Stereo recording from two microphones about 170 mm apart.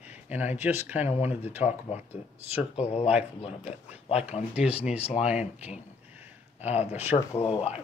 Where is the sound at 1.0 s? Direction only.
40° left (ahead or behind).